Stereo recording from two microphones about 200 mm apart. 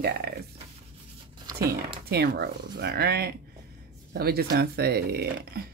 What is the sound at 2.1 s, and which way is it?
Speech, 55° right (ahead or behind).